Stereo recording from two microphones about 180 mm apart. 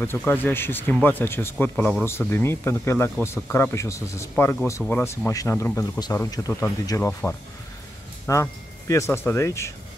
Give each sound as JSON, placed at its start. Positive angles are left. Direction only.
{"t": 0.0, "sound": "speech", "side_deg": 10}